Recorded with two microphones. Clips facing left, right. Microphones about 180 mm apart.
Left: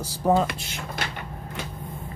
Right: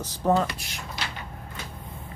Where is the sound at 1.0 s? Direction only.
50° left (ahead or behind).